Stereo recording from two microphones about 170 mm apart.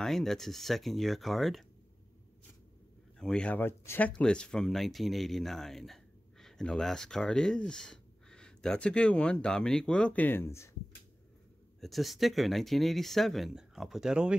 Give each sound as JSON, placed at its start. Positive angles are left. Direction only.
{"t": 0.0, "sound": "speech", "side_deg": 0}
{"t": 3.2, "sound": "speech", "side_deg": 5}
{"t": 11.8, "sound": "speech", "side_deg": 0}